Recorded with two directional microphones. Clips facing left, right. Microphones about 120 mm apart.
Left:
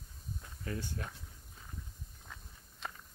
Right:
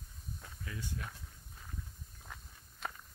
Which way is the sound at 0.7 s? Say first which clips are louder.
Left 4 dB; 40° left (ahead or behind).